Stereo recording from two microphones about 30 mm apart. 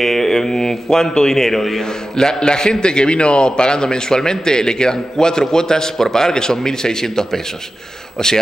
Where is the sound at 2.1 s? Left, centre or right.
Left.